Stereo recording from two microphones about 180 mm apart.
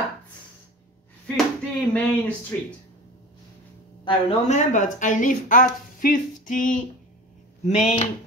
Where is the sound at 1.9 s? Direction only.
10° left (ahead or behind).